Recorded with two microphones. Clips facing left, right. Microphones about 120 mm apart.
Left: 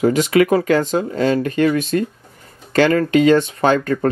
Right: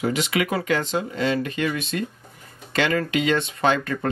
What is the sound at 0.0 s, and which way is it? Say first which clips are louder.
Speech: left 9 dB; 40° left (ahead or behind).